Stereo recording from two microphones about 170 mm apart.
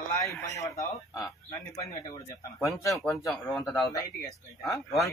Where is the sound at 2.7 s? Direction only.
20° left (ahead or behind).